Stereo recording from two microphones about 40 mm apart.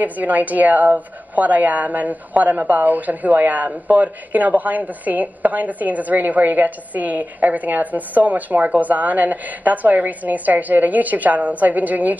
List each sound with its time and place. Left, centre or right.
0.0 s a woman's voice: right